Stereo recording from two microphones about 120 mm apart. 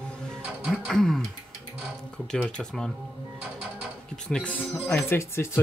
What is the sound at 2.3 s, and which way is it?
Speech, 5° left (ahead or behind).